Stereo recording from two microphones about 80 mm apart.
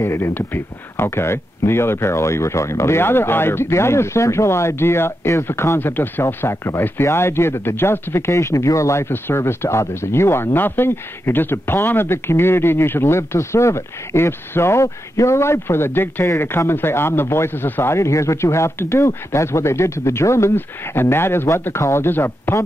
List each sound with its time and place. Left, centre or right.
0.0 s speech: left